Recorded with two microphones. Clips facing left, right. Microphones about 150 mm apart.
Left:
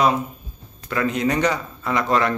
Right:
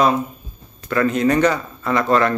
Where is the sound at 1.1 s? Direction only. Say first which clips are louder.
Right 4 dB; 15° left (ahead or behind).